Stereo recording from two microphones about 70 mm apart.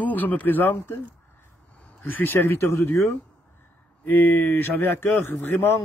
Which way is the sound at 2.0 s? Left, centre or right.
Left.